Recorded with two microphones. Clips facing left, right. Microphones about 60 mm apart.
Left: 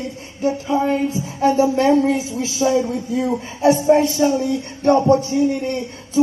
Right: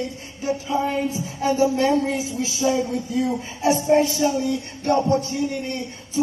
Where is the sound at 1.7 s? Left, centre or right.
Left.